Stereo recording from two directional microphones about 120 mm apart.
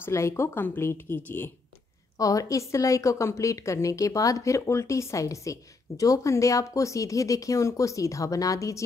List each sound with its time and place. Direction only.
0.0 s speech: 25° left (ahead or behind)
2.1 s a woman's voice: 30° left (ahead or behind)